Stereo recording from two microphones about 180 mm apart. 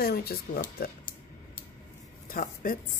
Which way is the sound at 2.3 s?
50° left (ahead or behind).